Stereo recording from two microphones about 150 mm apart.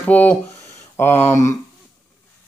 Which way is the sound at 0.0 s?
10° left (ahead or behind).